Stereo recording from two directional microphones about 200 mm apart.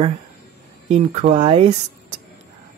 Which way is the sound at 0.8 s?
35° right (ahead or behind).